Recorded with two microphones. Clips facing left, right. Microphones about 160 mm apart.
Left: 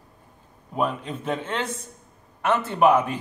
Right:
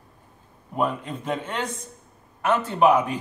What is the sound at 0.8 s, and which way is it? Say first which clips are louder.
Speech: even; 10° right (ahead or behind).